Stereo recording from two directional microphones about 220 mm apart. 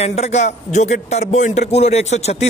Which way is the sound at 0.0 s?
30° left (ahead or behind).